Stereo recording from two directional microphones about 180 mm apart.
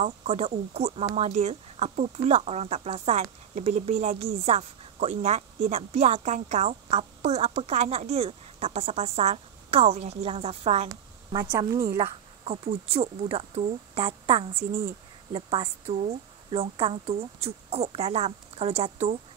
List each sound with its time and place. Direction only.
0.0 s speech: 35° right (ahead or behind)
10.9 s speech: 20° right (ahead or behind)
12.0 s speech: 35° right (ahead or behind)